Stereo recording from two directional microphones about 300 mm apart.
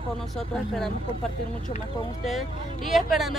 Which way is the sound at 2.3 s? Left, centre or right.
Centre.